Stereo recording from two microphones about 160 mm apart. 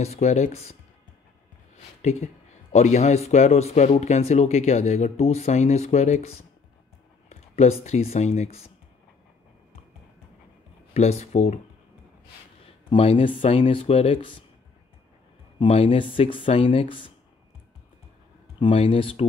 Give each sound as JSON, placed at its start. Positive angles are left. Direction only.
{"t": 0.0, "sound": "speech", "side_deg": 45}
{"t": 2.0, "sound": "speech", "side_deg": 45}
{"t": 10.9, "sound": "speech", "side_deg": 45}
{"t": 12.9, "sound": "speech", "side_deg": 35}
{"t": 15.6, "sound": "speech", "side_deg": 35}
{"t": 18.6, "sound": "speech", "side_deg": 35}